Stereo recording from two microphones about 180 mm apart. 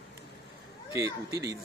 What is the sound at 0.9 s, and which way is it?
Speech, 15° right (ahead or behind).